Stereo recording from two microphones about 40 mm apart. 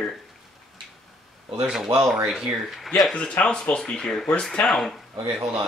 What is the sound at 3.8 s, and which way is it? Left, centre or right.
Speech, centre.